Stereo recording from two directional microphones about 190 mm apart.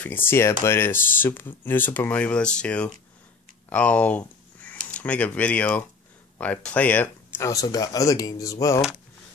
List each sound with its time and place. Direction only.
0.0 s speech: 10° left (ahead or behind)